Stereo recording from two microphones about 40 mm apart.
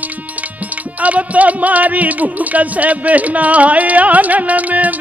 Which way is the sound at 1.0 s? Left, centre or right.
Right.